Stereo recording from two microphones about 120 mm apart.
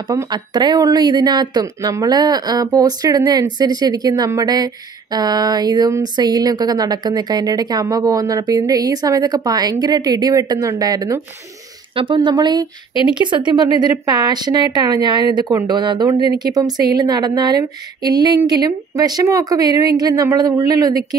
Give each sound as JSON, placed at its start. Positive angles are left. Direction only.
{"t": 0.1, "sound": "speech", "side_deg": -30}
{"t": 11.9, "sound": "speech", "side_deg": -45}